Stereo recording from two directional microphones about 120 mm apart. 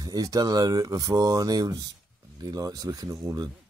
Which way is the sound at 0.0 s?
30° right (ahead or behind).